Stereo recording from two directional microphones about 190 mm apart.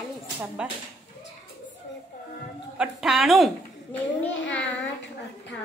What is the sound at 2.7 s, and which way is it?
Speech, centre (ahead or behind).